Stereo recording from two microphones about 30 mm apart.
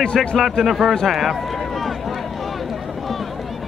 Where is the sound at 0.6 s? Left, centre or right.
Centre.